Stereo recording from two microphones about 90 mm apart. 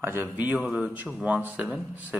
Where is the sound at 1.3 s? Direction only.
15° right (ahead or behind).